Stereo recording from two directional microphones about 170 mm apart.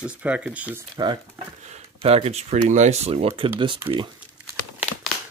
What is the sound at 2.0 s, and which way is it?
Speech, 35° right (ahead or behind).